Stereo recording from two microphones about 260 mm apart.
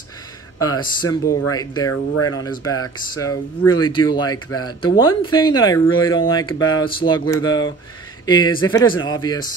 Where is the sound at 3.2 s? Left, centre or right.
Centre.